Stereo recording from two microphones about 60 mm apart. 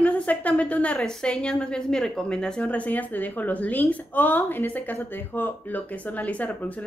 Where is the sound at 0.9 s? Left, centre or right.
Centre.